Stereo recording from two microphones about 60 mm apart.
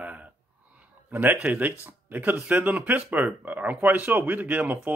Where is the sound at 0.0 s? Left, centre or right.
Right.